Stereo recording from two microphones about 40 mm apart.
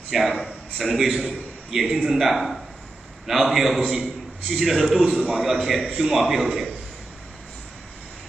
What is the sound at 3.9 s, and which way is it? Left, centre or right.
Speech, centre.